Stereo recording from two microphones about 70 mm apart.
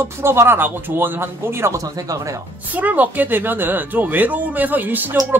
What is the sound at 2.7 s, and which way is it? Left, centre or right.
Speech, right.